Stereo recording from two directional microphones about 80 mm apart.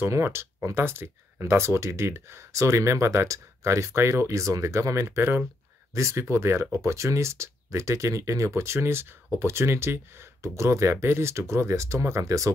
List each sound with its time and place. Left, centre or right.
0.0 s speech: right